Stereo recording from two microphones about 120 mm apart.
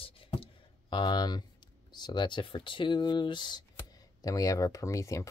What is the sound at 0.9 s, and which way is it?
Speech, 35° left (ahead or behind).